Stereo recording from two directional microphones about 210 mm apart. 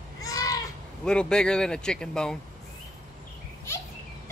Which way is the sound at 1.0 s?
5° left (ahead or behind).